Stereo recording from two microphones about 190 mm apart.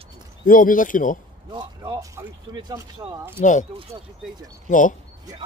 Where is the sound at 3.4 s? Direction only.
40° left (ahead or behind).